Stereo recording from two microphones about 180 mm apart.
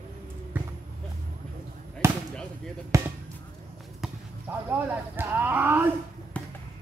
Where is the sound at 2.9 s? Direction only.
15° right (ahead or behind).